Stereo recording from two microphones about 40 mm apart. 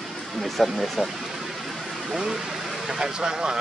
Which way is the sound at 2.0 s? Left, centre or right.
Centre.